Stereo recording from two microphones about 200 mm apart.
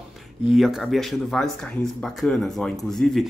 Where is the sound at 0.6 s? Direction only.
Centre (ahead or behind).